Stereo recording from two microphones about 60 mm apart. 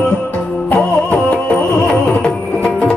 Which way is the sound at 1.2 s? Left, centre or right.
Centre.